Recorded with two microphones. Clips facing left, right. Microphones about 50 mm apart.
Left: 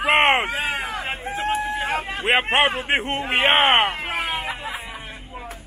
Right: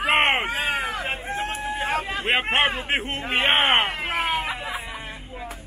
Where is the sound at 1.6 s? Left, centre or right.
Centre.